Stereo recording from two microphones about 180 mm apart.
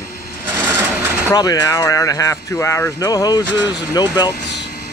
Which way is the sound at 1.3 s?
20° left (ahead or behind).